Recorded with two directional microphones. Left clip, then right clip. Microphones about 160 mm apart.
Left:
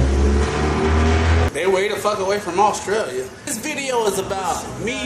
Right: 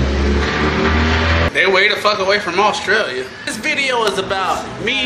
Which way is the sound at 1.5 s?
10° left (ahead or behind).